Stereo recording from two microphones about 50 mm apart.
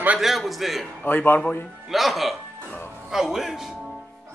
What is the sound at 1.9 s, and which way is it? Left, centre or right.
A man's voice, centre.